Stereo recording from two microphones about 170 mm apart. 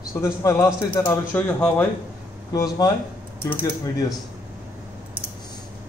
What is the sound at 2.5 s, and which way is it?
A man's voice, 20° left (ahead or behind).